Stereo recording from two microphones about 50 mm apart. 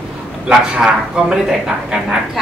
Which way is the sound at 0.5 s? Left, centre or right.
Centre.